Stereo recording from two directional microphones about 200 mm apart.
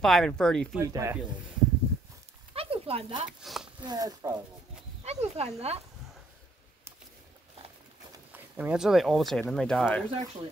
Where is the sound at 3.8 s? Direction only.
20° right (ahead or behind).